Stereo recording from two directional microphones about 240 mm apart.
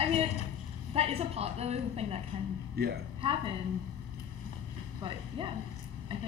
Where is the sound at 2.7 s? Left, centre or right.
Right.